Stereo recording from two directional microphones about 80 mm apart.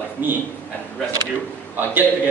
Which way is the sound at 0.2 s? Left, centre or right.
Right.